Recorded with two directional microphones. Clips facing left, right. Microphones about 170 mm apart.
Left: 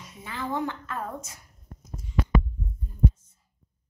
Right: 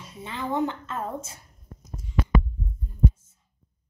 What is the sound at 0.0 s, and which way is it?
Speech, 30° right (ahead or behind).